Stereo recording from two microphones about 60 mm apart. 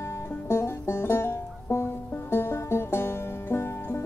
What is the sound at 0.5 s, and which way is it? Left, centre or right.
Music, left.